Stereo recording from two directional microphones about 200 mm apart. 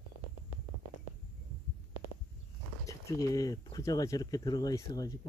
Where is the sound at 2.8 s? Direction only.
15° left (ahead or behind).